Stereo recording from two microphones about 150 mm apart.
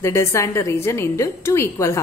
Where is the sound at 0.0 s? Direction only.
20° left (ahead or behind).